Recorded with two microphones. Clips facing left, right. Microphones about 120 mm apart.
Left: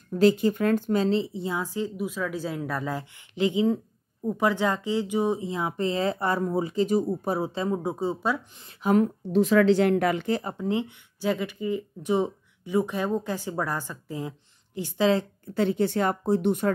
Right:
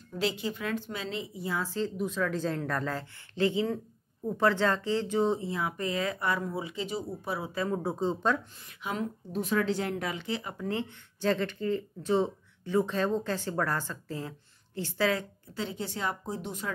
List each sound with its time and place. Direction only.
0.2 s speech: 45° left (ahead or behind)
7.5 s speech: 20° left (ahead or behind)
8.8 s a woman's voice: 50° left (ahead or behind)
9.3 s speech: 90° left; by 10.4 s 50° left (ahead or behind)
10.6 s speech: 15° left (ahead or behind)
15.5 s speech: 60° left (ahead or behind)